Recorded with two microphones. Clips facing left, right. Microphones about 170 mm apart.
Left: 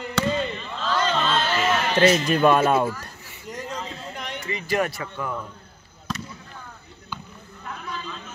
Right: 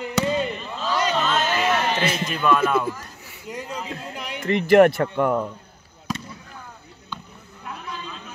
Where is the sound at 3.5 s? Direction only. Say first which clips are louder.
Right 1 dB; 10° right (ahead or behind).